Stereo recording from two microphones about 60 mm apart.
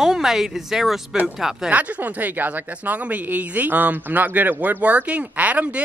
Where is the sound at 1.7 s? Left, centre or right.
Right.